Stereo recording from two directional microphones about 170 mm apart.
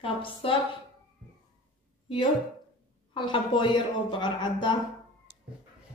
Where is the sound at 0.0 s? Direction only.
30° left (ahead or behind).